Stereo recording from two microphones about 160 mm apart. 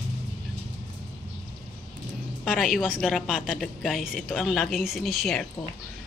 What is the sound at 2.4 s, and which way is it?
A woman's voice, centre (ahead or behind).